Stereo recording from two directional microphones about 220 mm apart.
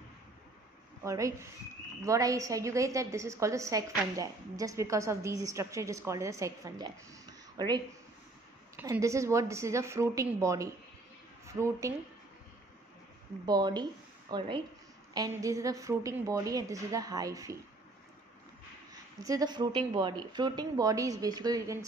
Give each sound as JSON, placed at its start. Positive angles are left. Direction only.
{"t": 1.0, "sound": "a woman's voice", "side_deg": -15}
{"t": 13.5, "sound": "a woman's voice", "side_deg": -20}
{"t": 19.2, "sound": "a woman's voice", "side_deg": -15}